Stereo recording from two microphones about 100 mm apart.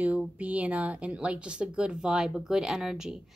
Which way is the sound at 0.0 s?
15° right (ahead or behind).